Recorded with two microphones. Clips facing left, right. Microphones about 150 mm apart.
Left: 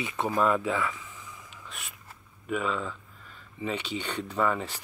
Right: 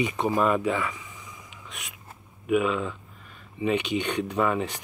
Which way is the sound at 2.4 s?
15° right (ahead or behind).